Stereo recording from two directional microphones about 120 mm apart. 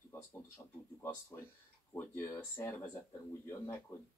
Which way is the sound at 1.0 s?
20° left (ahead or behind).